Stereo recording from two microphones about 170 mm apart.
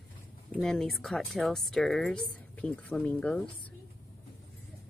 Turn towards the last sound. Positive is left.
turn(degrees=10)  # may be behind; listen again after turning